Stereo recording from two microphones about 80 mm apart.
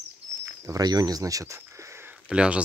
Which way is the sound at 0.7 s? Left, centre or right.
Right.